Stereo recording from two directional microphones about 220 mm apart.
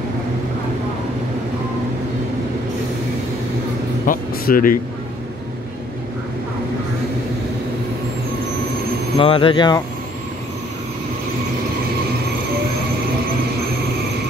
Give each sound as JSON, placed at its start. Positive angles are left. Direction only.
{"t": 4.0, "sound": "speech", "side_deg": 40}
{"t": 9.2, "sound": "speech", "side_deg": 25}